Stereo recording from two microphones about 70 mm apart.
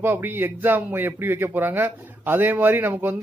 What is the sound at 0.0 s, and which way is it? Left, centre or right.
Speech, right.